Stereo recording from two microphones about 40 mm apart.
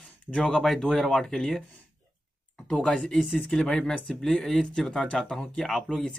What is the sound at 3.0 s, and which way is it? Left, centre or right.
Speech, centre.